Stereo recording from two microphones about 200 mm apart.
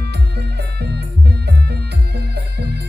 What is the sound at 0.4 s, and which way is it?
Music, 55° right (ahead or behind).